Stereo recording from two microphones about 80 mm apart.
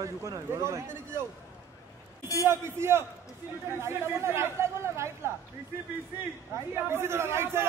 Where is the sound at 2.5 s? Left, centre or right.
Right.